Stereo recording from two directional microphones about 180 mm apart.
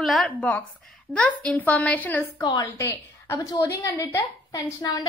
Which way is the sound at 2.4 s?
20° left (ahead or behind).